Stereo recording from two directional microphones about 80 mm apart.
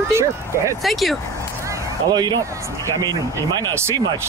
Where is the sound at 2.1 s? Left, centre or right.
Right.